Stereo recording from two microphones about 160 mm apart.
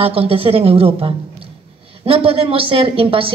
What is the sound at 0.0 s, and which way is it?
A woman's voice, 35° right (ahead or behind).